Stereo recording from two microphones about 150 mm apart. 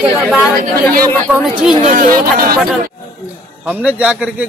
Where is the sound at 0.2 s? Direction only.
10° right (ahead or behind).